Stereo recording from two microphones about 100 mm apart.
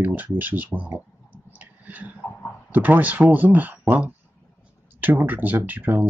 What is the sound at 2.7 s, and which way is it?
Speech, 20° right (ahead or behind).